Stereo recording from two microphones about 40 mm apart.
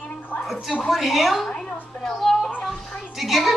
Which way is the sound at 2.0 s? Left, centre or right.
Centre.